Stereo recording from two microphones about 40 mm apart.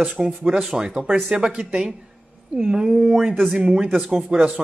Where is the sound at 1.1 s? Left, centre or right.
Right.